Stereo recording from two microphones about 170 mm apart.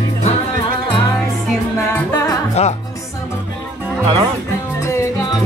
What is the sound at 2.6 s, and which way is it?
Speech, 40° left (ahead or behind).